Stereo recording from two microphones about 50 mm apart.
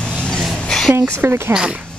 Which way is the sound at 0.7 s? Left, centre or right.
Centre.